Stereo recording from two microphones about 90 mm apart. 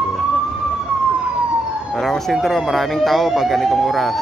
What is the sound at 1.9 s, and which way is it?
Speech, centre (ahead or behind).